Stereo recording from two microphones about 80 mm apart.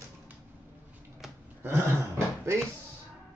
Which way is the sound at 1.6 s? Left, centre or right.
Right.